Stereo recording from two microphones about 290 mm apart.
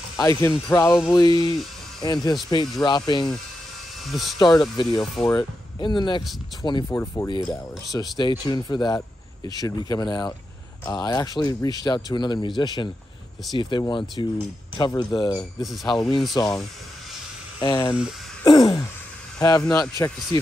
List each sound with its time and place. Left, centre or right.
0.2 s speech: centre
0.9 s speech: centre
1.2 s speech: centre
4.0 s speech: centre
4.4 s speech: centre
15.6 s speech: centre
17.6 s speech: centre
18.4 s a sound: centre
19.4 s speech: centre